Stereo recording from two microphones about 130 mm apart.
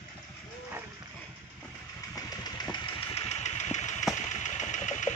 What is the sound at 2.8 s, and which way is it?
Engine, 55° left (ahead or behind).